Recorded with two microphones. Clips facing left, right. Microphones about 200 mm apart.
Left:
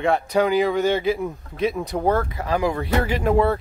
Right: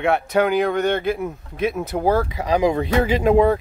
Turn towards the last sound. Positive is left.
turn(degrees=-15)  # may be behind; listen again after turning